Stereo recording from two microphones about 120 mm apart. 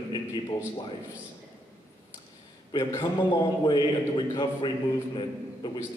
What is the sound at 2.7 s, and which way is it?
A man's voice, 30° left (ahead or behind).